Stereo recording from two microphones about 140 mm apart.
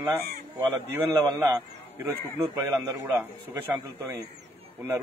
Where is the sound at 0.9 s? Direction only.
20° right (ahead or behind).